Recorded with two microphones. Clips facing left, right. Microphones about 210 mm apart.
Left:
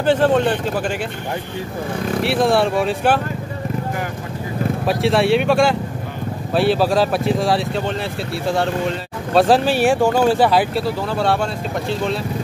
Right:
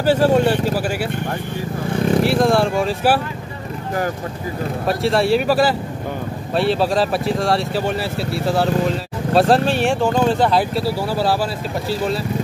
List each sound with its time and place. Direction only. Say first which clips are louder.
0.0 s speech: right 1 dB; 10° right (ahead or behind)
2.2 s speech: left 4 dB; centre (ahead or behind)
4.8 s speech: even; centre (ahead or behind)